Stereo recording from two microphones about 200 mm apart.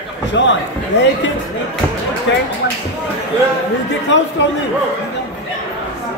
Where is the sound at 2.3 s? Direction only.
60° left (ahead or behind).